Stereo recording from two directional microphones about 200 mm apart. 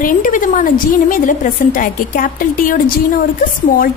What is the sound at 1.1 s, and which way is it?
A woman's voice, 40° left (ahead or behind).